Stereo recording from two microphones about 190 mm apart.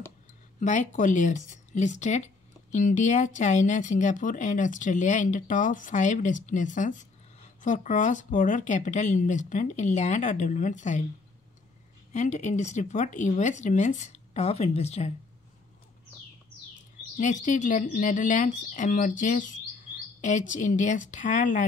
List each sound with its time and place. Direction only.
0.6 s speech: 40° left (ahead or behind)
12.1 s speech: 40° left (ahead or behind)
17.2 s speech: 40° left (ahead or behind)